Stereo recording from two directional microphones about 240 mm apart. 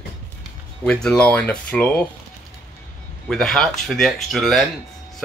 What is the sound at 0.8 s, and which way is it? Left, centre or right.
Speech, centre.